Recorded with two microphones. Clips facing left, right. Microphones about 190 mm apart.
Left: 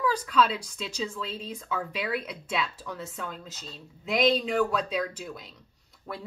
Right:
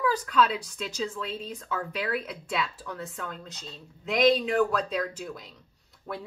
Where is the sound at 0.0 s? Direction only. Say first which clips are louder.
Even; centre (ahead or behind).